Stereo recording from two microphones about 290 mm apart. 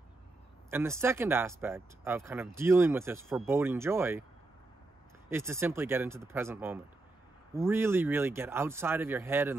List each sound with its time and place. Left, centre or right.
0.7 s speech: centre
5.3 s speech: centre